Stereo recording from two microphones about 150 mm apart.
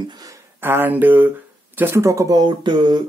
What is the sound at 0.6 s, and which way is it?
Speech, 15° right (ahead or behind).